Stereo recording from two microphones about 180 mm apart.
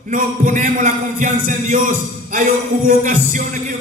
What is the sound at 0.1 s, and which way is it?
Music, 45° right (ahead or behind).